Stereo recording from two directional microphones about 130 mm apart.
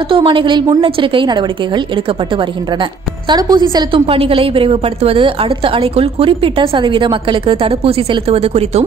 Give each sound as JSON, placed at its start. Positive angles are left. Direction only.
{"t": 0.1, "sound": "a woman's voice", "side_deg": -40}